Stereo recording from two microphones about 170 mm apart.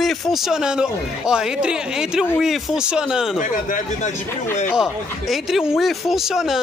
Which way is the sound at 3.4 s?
50° left (ahead or behind).